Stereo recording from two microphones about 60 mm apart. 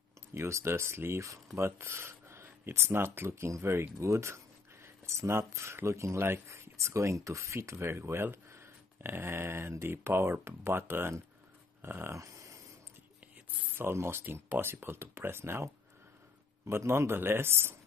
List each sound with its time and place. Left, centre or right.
0.3 s speech: right
12.2 s a sound: right
13.7 s speech: right